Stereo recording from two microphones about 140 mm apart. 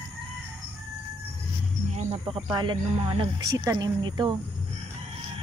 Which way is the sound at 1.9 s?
45° right (ahead or behind).